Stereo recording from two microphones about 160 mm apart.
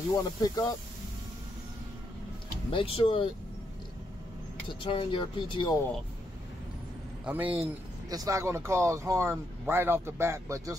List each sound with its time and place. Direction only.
0.1 s speech: 20° left (ahead or behind)
2.7 s speech: 35° left (ahead or behind)
4.8 s speech: 30° left (ahead or behind)
7.2 s speech: 10° right (ahead or behind)
8.1 s speech: 20° right (ahead or behind)